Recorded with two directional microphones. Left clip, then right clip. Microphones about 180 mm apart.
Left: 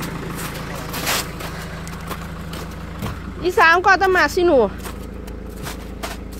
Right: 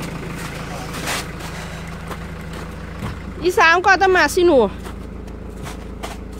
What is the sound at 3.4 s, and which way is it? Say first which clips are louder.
A woman's voice: even; 25° right (ahead or behind).